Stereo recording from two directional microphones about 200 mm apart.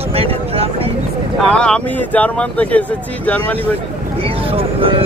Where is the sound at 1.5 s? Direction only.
5° left (ahead or behind).